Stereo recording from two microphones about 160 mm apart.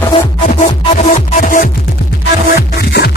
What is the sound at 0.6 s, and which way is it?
Music, 55° left (ahead or behind).